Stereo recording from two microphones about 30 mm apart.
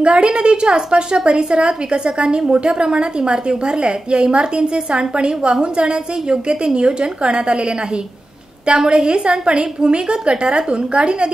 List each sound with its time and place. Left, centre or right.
0.0 s a woman's voice: right
8.7 s a woman's voice: right